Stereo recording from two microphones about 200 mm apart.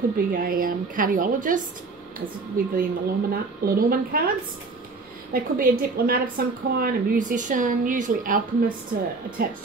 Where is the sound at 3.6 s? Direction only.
45° right (ahead or behind).